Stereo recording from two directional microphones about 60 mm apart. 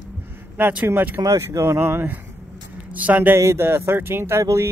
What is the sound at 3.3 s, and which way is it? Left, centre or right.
Speech, right.